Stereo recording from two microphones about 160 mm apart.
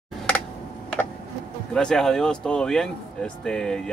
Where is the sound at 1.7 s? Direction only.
5° left (ahead or behind).